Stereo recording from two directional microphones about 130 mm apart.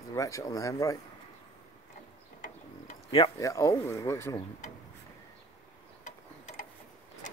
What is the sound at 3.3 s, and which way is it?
Speech, 25° left (ahead or behind).